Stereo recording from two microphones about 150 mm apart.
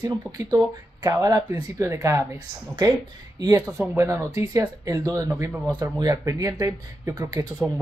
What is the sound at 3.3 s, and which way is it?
Speech, 25° right (ahead or behind).